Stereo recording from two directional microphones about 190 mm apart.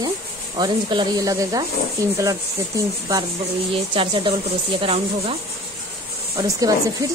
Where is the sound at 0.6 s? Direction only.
25° right (ahead or behind).